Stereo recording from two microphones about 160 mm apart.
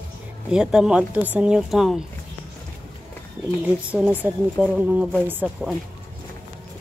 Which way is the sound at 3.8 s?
10° right (ahead or behind).